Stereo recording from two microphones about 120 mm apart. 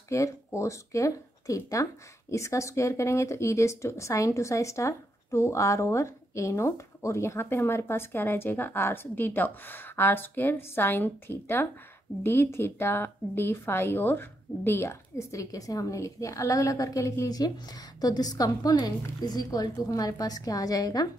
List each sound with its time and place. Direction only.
0.1 s a woman's voice: 25° left (ahead or behind)